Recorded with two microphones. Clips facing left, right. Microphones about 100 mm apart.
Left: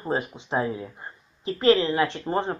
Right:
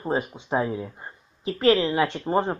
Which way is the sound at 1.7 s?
20° right (ahead or behind).